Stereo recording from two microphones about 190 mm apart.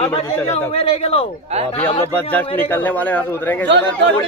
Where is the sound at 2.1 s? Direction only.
10° left (ahead or behind).